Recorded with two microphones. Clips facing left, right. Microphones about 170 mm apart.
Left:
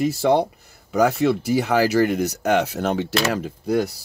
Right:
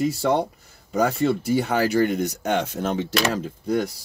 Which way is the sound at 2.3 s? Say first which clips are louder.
Left 4 dB; 70° left (ahead or behind).